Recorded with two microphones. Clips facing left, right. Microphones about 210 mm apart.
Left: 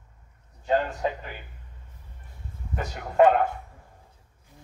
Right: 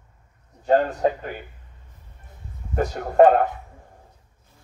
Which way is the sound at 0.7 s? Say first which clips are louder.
Right 6 dB; 45° right (ahead or behind).